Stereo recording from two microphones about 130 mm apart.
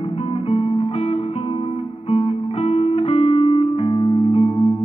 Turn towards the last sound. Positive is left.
turn(degrees=45)  # may be behind; listen again after turning